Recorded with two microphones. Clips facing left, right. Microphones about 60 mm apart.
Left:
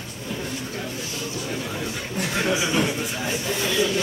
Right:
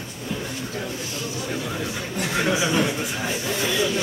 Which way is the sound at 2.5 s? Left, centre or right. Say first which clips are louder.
Right 1 dB; right.